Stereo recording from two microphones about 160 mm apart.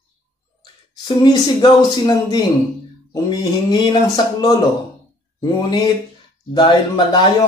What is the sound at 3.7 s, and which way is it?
Speech, 25° left (ahead or behind).